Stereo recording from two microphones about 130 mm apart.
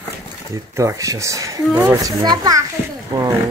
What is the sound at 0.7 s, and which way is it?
Speech, 25° right (ahead or behind).